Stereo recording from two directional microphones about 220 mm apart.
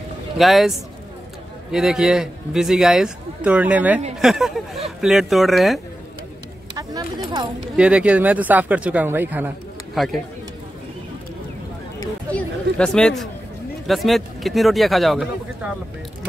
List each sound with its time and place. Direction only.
0.4 s speech: centre (ahead or behind)
6.8 s speech: 15° right (ahead or behind)
7.7 s speech: 5° right (ahead or behind)
12.0 s a sound: 5° left (ahead or behind)
13.8 s speech: centre (ahead or behind)